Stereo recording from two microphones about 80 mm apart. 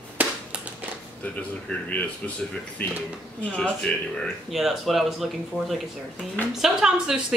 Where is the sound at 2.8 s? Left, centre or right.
Left.